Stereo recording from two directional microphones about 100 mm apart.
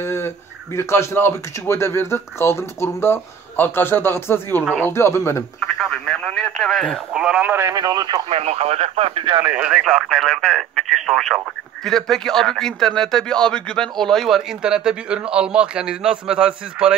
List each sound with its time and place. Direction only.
0.0 s a sound: 25° left (ahead or behind)
0.7 s speech: 25° left (ahead or behind)
5.8 s speech: 5° left (ahead or behind)
7.2 s speech: 10° right (ahead or behind)
7.5 s speech: 35° right (ahead or behind)
8.3 s speech: 90° right; by 9.4 s 65° right (ahead or behind)
9.4 s speech: 15° right (ahead or behind)